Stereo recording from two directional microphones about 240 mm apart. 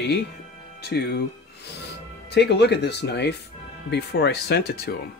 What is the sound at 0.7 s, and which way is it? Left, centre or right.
Speech, left.